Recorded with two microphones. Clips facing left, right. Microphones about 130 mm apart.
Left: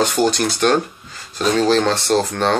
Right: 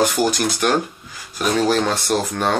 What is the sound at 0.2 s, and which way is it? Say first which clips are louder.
Speech: left 2 dB; 10° right (ahead or behind).